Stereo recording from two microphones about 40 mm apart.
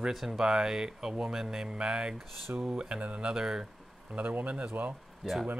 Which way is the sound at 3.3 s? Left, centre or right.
Centre.